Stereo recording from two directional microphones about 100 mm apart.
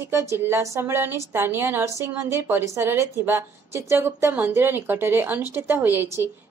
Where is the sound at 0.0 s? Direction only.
30° right (ahead or behind).